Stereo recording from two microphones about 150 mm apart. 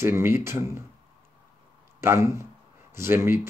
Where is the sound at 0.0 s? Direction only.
15° right (ahead or behind).